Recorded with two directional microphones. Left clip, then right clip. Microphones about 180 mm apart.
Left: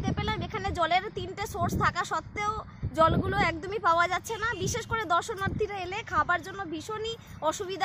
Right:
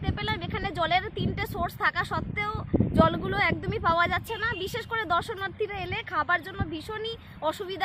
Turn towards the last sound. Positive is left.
turn(degrees=0)  # may be behind; listen again after turning